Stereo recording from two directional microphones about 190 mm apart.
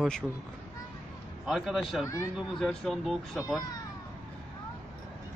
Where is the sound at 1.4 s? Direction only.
Centre (ahead or behind).